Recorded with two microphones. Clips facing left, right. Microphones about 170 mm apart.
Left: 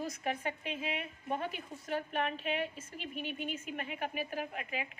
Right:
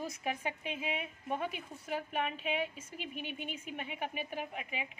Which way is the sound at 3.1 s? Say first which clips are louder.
Left 4 dB; 40° left (ahead or behind).